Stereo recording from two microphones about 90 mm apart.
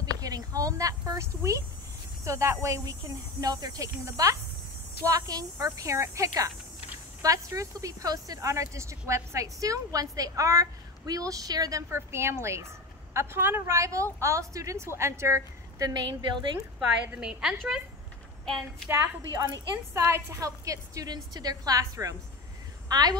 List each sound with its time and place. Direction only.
0.0 s speech: 45° right (ahead or behind)
11.9 s a woman's voice: 30° right (ahead or behind)
15.9 s a woman's voice: 55° right (ahead or behind)
17.1 s a woman's voice: 10° right (ahead or behind)
19.4 s a woman's voice: 30° right (ahead or behind); by 23.1 s 50° right (ahead or behind)